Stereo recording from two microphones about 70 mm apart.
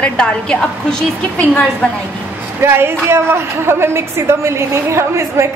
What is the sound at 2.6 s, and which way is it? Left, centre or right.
A woman's voice, right.